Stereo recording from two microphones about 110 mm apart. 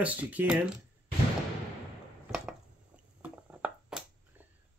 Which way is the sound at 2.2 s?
5° right (ahead or behind).